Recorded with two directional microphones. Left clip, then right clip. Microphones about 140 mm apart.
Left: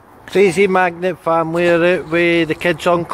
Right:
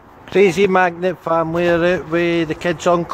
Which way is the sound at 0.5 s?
5° right (ahead or behind).